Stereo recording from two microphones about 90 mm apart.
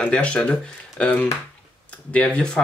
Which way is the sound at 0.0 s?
10° left (ahead or behind).